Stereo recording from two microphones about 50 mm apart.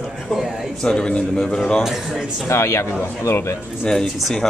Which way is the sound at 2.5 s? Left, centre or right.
Left.